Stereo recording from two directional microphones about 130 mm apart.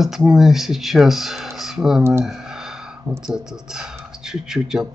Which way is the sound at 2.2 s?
5° right (ahead or behind).